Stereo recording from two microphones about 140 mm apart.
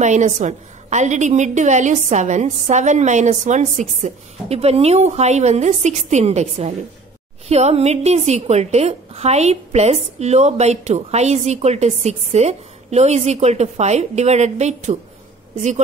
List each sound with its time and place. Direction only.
0.0 s a woman's voice: 60° right (ahead or behind)